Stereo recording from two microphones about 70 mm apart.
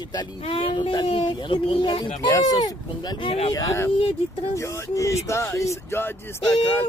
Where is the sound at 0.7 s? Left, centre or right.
Left.